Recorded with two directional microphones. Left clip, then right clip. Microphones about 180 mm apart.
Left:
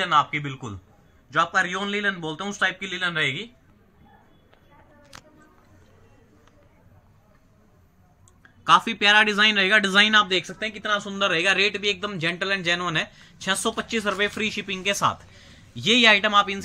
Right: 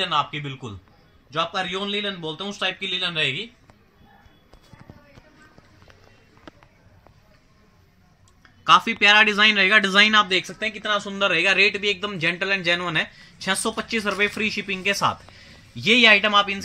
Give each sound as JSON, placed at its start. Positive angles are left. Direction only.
{"t": 0.0, "sound": "speech", "side_deg": -20}
{"t": 8.4, "sound": "a man's voice", "side_deg": -15}